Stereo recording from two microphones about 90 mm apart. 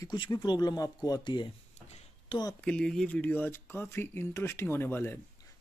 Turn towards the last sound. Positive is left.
turn(degrees=25)  # may be behind; listen again after turning